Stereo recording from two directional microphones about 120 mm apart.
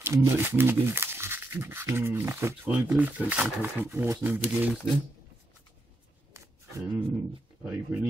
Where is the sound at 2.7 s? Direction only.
10° right (ahead or behind).